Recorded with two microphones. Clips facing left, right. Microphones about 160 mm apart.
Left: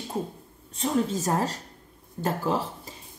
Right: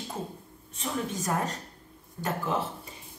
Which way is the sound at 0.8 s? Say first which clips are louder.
Left 7 dB; 30° left (ahead or behind).